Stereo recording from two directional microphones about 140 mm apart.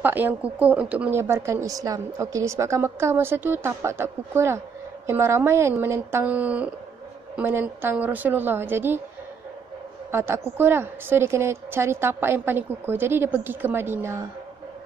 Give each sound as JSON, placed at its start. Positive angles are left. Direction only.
{"t": 0.0, "sound": "a woman's voice", "side_deg": -15}
{"t": 10.1, "sound": "a woman's voice", "side_deg": -15}